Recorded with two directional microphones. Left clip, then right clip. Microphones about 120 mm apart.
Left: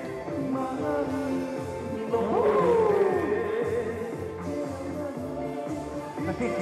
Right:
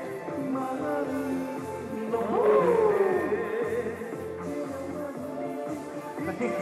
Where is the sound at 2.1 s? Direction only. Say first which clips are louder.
Right 1 dB; 45° left (ahead or behind).